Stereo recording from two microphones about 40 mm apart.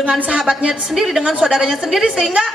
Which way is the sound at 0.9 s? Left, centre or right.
Centre.